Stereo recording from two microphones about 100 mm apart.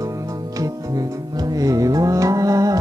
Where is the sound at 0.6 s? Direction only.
40° right (ahead or behind).